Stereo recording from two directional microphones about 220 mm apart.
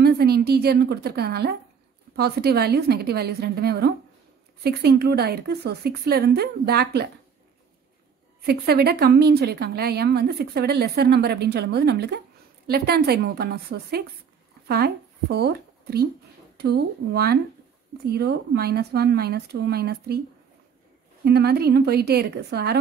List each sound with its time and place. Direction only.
0.0 s a woman's voice: 45° right (ahead or behind)
8.4 s a woman's voice: 45° right (ahead or behind)
15.3 s a woman's voice: 45° right (ahead or behind)
21.2 s a woman's voice: 45° right (ahead or behind)